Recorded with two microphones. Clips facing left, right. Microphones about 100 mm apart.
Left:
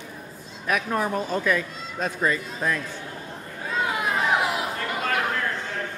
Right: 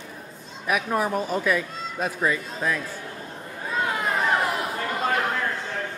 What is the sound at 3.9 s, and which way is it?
Chatter, 5° left (ahead or behind).